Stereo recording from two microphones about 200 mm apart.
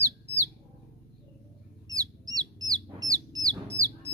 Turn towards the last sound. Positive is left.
turn(degrees=-15)  # may be behind; listen again after turning